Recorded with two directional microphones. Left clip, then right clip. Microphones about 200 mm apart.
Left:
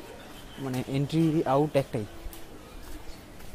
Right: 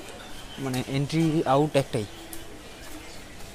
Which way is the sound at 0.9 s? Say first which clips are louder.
Even; 10° left (ahead or behind).